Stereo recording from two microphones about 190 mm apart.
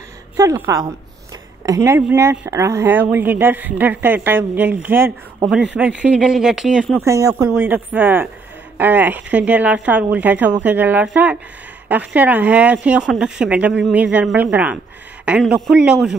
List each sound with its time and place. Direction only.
0.4 s speech: 15° right (ahead or behind)
7.1 s speech: 15° right (ahead or behind)